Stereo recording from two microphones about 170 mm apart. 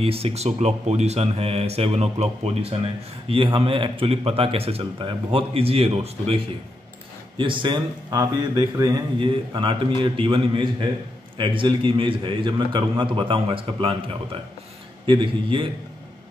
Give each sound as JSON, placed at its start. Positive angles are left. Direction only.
{"t": 0.0, "sound": "a man's voice", "side_deg": -35}
{"t": 15.0, "sound": "a man's voice", "side_deg": -30}